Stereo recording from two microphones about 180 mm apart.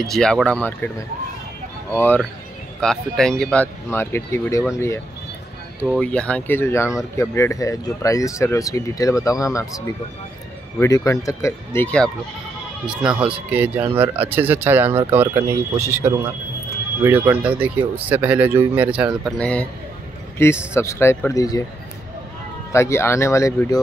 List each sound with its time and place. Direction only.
0.0 s speech: centre (ahead or behind)
1.9 s speech: 10° left (ahead or behind)
12.8 s speech: 5° right (ahead or behind)
19.3 s speech: 5° left (ahead or behind)
22.7 s speech: 15° left (ahead or behind)